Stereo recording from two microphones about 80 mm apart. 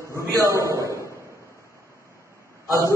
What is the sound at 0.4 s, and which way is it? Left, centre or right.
Speech, right.